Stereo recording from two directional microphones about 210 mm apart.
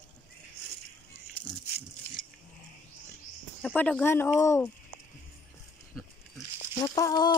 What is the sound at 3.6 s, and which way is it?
Speech, 5° left (ahead or behind).